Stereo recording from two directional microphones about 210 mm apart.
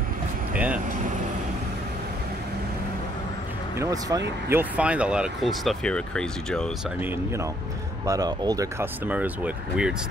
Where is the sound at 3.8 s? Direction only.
15° right (ahead or behind).